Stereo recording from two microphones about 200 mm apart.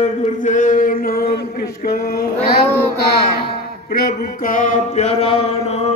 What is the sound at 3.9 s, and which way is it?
Mantra, 45° left (ahead or behind).